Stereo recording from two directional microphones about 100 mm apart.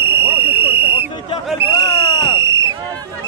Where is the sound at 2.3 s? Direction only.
30° right (ahead or behind).